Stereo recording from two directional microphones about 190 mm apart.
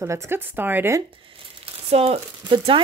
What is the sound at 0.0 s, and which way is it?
Speech, 15° right (ahead or behind).